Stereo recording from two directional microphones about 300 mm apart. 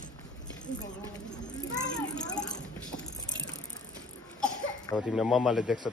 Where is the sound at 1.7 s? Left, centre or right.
Centre.